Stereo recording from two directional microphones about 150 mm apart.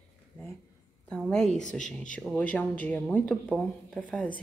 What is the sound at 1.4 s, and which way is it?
Speech, 55° left (ahead or behind).